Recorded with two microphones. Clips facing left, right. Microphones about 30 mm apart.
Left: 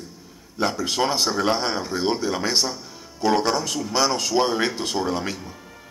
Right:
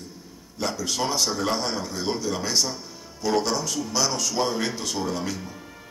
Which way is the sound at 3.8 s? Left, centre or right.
Left.